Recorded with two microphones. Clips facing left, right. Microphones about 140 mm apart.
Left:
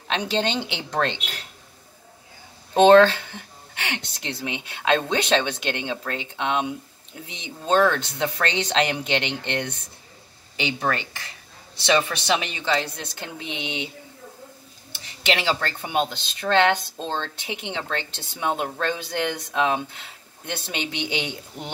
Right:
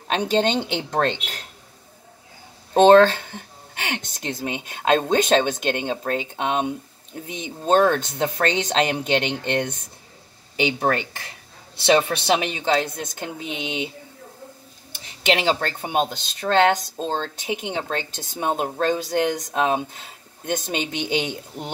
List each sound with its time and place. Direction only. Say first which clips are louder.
0.1 s speech: right 4 dB; 45° right (ahead or behind)
2.7 s speech: right 1 dB; 45° right (ahead or behind)
10.8 s a woman's voice: right 4 dB; 50° right (ahead or behind)
15.4 s speech: right 3 dB; 45° right (ahead or behind)